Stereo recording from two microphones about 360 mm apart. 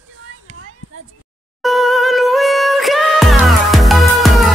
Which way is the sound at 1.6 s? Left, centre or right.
Centre.